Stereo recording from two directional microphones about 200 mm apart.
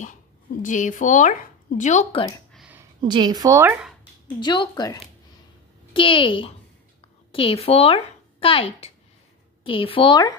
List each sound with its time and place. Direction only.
0.6 s speech: 40° left (ahead or behind)
2.5 s a sound: 5° right (ahead or behind)
3.0 s speech: 20° right (ahead or behind)
4.4 s a woman's voice: 25° left (ahead or behind)